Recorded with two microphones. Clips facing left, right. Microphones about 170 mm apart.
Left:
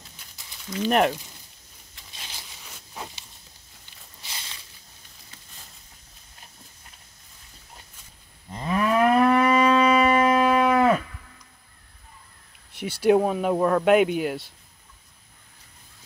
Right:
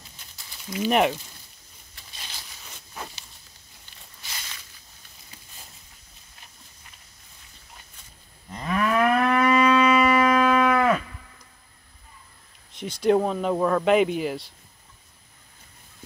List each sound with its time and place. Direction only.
0.7 s speech: 5° right (ahead or behind)
2.9 s walk: 15° left (ahead or behind)
4.2 s a sound: 25° left (ahead or behind)
8.5 s moo: 25° left (ahead or behind)
9.3 s shofar: 30° left (ahead or behind)
12.7 s speech: 5° left (ahead or behind)